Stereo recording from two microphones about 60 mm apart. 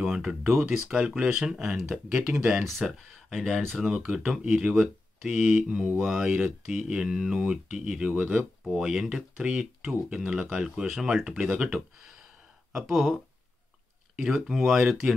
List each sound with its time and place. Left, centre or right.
0.0 s a sound: centre
0.7 s speech: centre
2.8 s speech: centre; by 8.5 s right
8.6 s speech: centre
11.0 s speech: centre
14.4 s speech: centre